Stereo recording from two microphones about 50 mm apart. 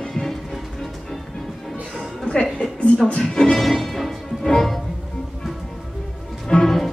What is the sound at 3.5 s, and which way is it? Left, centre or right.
Music, centre.